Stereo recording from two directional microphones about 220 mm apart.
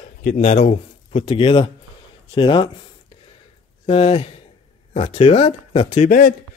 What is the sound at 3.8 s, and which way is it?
A man's voice, 25° left (ahead or behind).